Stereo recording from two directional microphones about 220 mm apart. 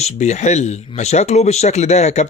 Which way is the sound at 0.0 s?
30° left (ahead or behind).